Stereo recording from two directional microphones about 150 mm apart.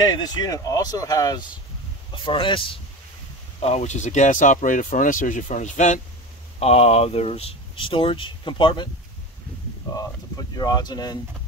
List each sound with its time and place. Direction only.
0.0 s speech: 25° left (ahead or behind); by 5.9 s 55° left (ahead or behind)
6.6 s speech: 45° left (ahead or behind)
10.5 s speech: 25° left (ahead or behind)